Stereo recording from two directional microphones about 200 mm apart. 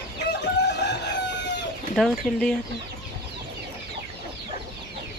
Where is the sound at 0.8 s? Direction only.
60° left (ahead or behind).